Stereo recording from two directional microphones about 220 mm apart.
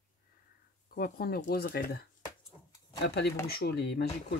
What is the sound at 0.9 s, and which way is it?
Speech, 40° left (ahead or behind).